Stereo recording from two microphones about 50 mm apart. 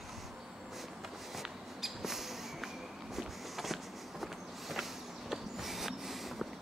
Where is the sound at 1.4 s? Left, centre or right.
Centre.